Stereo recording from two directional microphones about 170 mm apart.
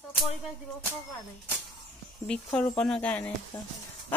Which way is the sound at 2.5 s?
5° left (ahead or behind).